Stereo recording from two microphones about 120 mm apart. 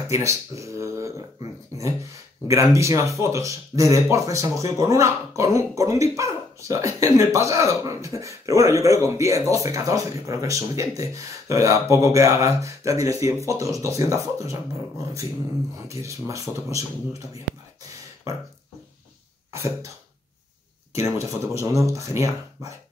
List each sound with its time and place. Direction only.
0.1 s speech: 25° right (ahead or behind)
1.4 s dog: 30° right (ahead or behind)
2.4 s speech: 25° right (ahead or behind)
15.9 s speech: 25° right (ahead or behind)
19.5 s speech: 25° right (ahead or behind)
20.9 s speech: 25° right (ahead or behind)